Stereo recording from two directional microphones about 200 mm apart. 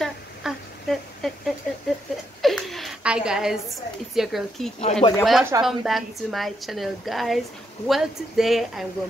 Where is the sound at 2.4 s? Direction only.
Centre (ahead or behind).